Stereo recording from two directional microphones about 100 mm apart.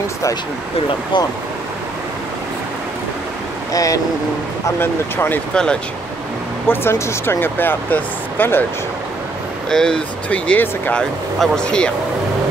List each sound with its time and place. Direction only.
1.1 s speech: 50° left (ahead or behind)
3.7 s speech: 35° left (ahead or behind)
4.6 s speech: 25° left (ahead or behind)
5.5 s speech: 10° left (ahead or behind)
6.7 s speech: 25° left (ahead or behind)
9.7 s speech: 5° left (ahead or behind)